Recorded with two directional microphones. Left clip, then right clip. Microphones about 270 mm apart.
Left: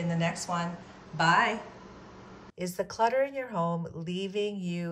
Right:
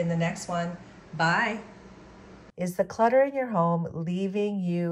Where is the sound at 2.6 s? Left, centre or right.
Centre.